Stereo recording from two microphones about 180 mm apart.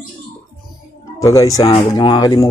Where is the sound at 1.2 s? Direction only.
20° left (ahead or behind).